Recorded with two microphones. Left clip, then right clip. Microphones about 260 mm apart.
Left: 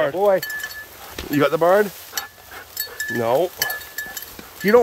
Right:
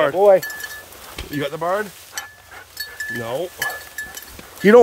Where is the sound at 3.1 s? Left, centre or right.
Centre.